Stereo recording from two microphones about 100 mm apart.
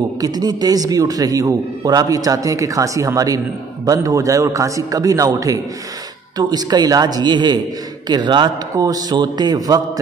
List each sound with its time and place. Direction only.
0.2 s a man's voice: 40° right (ahead or behind)